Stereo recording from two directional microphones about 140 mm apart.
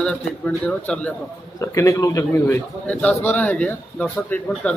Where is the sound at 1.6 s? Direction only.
20° left (ahead or behind).